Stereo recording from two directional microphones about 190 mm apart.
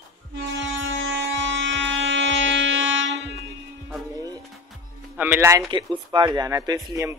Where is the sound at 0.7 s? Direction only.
75° right (ahead or behind).